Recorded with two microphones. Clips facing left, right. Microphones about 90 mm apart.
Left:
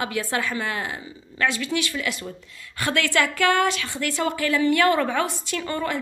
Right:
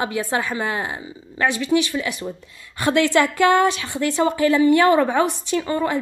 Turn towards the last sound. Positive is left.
turn(degrees=-20)  # may be behind; listen again after turning